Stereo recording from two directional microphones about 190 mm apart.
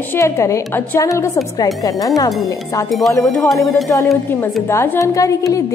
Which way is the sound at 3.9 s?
10° left (ahead or behind).